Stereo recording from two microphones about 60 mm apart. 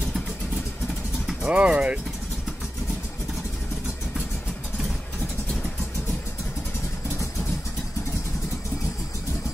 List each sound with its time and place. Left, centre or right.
1.4 s speech: centre